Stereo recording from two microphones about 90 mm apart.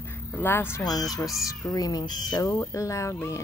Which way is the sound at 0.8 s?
45° left (ahead or behind).